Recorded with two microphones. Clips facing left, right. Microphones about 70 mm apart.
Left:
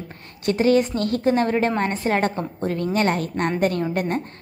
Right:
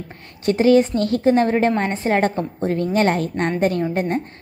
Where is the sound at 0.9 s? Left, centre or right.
Left.